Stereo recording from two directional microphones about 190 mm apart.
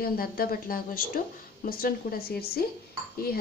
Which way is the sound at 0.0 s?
50° left (ahead or behind).